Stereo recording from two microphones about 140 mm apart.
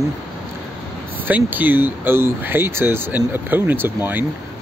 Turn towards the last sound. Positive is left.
turn(degrees=-15)  # may be behind; listen again after turning